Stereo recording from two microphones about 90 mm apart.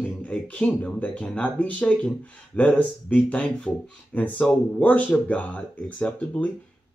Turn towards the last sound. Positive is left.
turn(degrees=15)  # may be behind; listen again after turning